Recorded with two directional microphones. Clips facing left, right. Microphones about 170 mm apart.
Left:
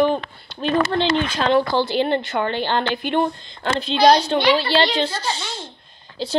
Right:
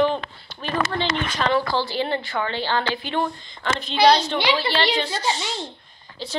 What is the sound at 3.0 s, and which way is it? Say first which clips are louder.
Speech: left 5 dB; 55° left (ahead or behind).